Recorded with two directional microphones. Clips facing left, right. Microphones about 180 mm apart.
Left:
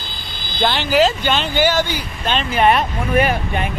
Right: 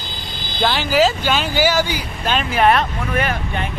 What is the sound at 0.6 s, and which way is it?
Speech, 5° right (ahead or behind).